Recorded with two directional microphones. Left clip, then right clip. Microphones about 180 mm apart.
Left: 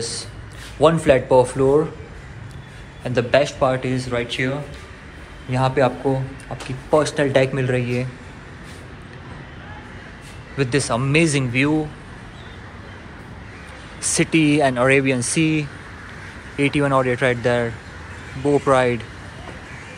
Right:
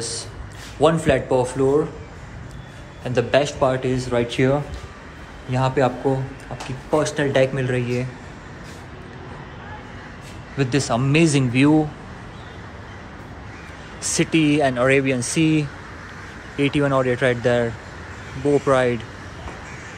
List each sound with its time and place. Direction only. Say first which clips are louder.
0.0 s a man's voice: left 1 dB; 15° right (ahead or behind)
3.0 s speech: left 1 dB; 15° right (ahead or behind)
4.3 s speech: right 4 dB; 35° right (ahead or behind)
5.5 s speech: left 1 dB; 15° right (ahead or behind)
10.6 s speech: left 1 dB; 15° right (ahead or behind)
14.0 s speech: left 1 dB; 10° right (ahead or behind)